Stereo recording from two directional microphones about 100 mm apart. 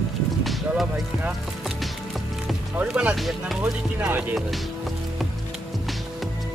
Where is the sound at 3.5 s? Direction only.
15° right (ahead or behind).